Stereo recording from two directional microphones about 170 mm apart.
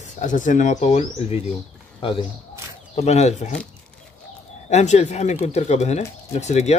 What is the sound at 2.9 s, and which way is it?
Speech, 40° left (ahead or behind).